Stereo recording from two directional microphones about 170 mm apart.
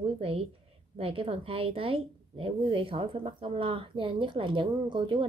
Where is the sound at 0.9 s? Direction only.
35° right (ahead or behind).